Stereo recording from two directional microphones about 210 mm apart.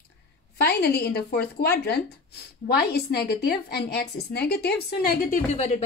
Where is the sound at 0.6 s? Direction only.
50° left (ahead or behind); by 5.8 s 35° left (ahead or behind).